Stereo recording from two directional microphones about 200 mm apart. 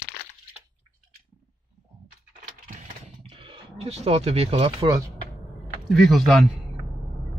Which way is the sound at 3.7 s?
30° right (ahead or behind).